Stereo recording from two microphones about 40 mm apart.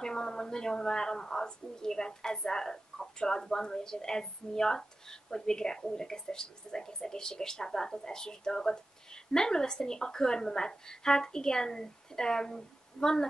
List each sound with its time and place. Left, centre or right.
0.0 s a woman's voice: centre